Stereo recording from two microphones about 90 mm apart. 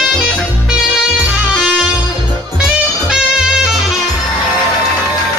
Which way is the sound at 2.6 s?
5° right (ahead or behind).